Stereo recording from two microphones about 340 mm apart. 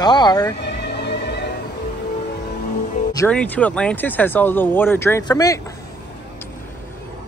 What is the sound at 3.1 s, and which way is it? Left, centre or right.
Speech, centre.